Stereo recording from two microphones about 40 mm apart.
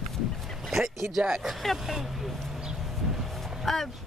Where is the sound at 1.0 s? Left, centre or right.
Right.